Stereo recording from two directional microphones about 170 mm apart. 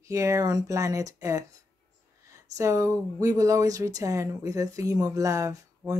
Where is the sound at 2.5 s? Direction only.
20° right (ahead or behind).